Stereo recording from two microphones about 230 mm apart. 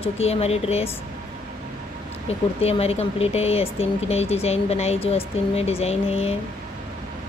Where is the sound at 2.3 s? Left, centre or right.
Left.